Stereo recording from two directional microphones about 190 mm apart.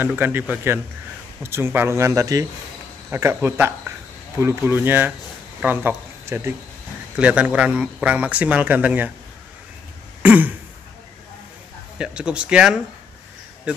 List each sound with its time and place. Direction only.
0.0 s speech: 10° right (ahead or behind)
10.2 s speech: 10° right (ahead or behind)
12.0 s speech: 5° right (ahead or behind)